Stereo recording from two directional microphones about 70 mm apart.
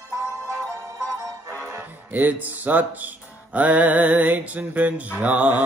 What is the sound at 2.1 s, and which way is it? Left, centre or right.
Mantra, right.